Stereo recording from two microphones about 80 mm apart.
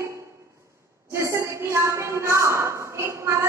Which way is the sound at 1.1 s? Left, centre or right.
Right.